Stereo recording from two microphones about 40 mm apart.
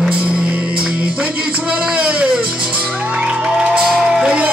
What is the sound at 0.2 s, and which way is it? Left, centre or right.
Music, right.